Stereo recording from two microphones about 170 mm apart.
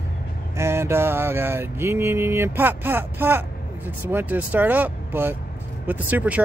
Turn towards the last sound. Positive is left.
turn(degrees=-10)  # may be behind; listen again after turning